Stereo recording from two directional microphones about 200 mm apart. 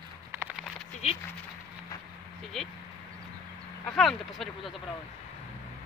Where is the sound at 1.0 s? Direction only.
30° left (ahead or behind).